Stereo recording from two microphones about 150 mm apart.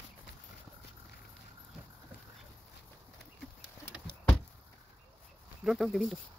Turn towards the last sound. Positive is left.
turn(degrees=0)  # may be behind; listen again after turning